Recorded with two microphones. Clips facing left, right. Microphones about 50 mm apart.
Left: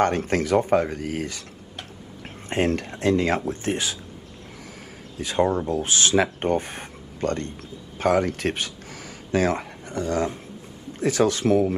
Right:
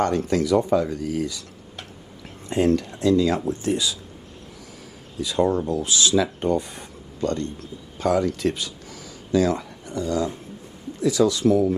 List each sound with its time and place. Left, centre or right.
0.0 s speech: left
5.2 s speech: left